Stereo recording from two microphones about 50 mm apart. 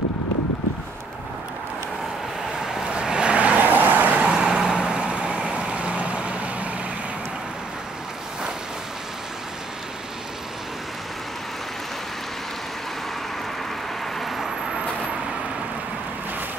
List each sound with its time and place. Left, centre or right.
2.9 s vehicle: centre; by 4.2 s right
4.2 s vehicle: centre
14.2 s vehicle: centre